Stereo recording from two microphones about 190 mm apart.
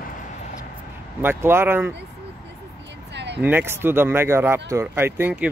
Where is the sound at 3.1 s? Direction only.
65° right (ahead or behind).